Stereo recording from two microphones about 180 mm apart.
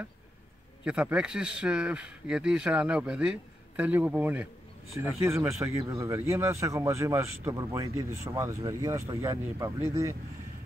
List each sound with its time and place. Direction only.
0.8 s speech: 5° right (ahead or behind)